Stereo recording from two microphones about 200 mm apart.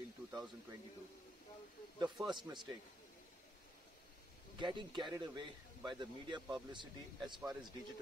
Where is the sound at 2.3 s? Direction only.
20° right (ahead or behind).